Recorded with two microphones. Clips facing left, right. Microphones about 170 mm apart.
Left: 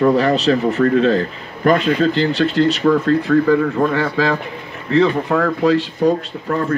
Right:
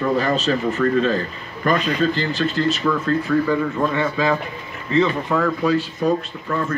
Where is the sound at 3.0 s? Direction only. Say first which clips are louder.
Left 5 dB; 90° left.